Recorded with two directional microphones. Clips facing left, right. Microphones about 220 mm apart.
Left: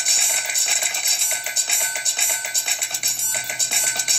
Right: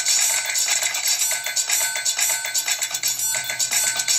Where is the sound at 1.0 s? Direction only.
55° left (ahead or behind).